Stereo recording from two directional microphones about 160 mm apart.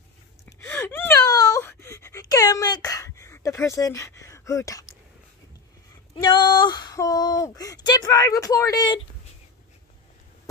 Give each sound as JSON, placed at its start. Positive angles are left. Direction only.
{"t": 0.7, "sound": "a sound", "side_deg": 10}
{"t": 1.2, "sound": "wail", "side_deg": 25}
{"t": 6.1, "sound": "speech", "side_deg": 30}